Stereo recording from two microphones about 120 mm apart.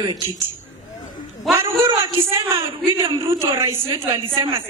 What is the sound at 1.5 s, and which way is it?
Speech, 20° right (ahead or behind).